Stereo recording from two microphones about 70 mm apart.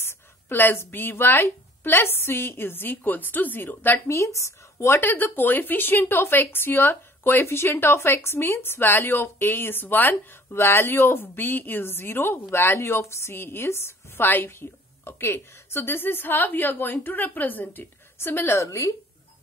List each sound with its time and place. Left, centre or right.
0.0 s a woman's voice: left
4.1 s a woman's voice: left
18.5 s a woman's voice: left